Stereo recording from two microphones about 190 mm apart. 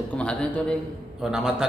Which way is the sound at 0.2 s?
5° left (ahead or behind).